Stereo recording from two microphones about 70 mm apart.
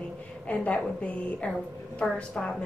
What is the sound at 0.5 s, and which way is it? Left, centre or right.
A woman's voice, centre.